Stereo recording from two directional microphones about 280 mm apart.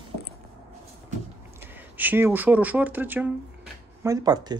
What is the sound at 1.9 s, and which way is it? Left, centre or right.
Speech, centre.